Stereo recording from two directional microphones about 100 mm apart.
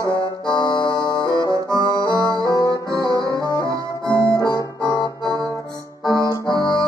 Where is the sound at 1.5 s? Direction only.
35° right (ahead or behind).